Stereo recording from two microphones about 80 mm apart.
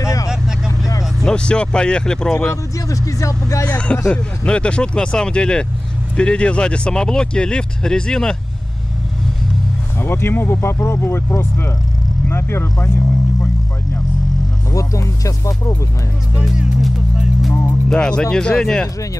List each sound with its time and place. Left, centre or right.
0.0 s vehicle: left
1.2 s speech: centre
2.5 s speech: left
3.6 s speech: centre
9.9 s speech: left
14.7 s speech: left
16.4 s speech: centre
17.8 s speech: centre